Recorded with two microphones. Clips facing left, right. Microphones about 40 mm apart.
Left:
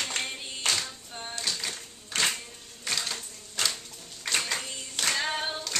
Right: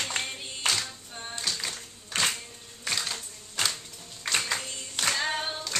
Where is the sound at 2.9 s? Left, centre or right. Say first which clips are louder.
Right 1 dB; centre.